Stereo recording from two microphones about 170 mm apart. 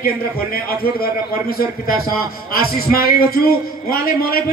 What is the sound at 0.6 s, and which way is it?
A man's voice, 60° left (ahead or behind).